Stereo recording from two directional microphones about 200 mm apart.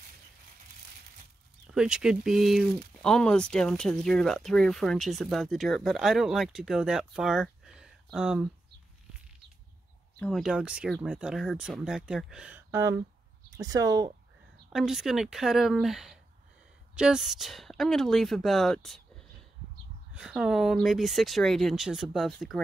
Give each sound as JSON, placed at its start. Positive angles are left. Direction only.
{"t": 1.7, "sound": "speech", "side_deg": -5}
{"t": 10.1, "sound": "speech", "side_deg": 5}
{"t": 14.7, "sound": "speech", "side_deg": 0}
{"t": 20.2, "sound": "speech", "side_deg": -5}